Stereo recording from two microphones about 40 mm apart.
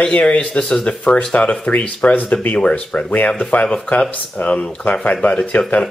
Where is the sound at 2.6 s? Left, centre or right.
Left.